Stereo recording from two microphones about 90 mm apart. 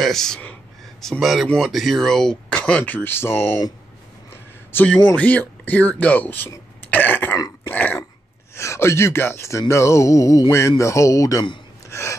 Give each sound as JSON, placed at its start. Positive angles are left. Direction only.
{"t": 0.0, "sound": "speech", "side_deg": 5}
{"t": 4.7, "sound": "speech", "side_deg": 15}
{"t": 6.9, "sound": "throat clearing", "side_deg": 20}
{"t": 8.5, "sound": "speech", "side_deg": 30}
{"t": 11.9, "sound": "a sound", "side_deg": 30}